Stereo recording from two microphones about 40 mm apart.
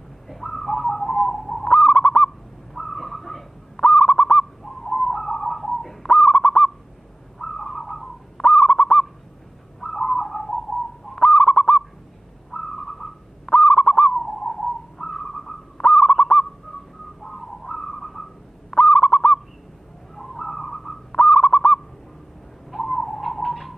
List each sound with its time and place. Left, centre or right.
0.3 s bird: centre
1.7 s owl: centre
3.7 s owl: centre
9.8 s bird: centre
11.2 s owl: left
11.5 s owl: centre
17.2 s bird: centre
18.7 s owl: centre
20.2 s a sound: centre
21.1 s bird: centre